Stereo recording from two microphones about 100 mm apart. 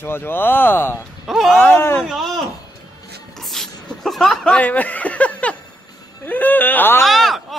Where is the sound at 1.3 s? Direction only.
Centre (ahead or behind).